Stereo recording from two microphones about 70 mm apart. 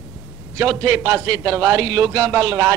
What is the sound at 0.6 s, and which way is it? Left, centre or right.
A man's voice, right.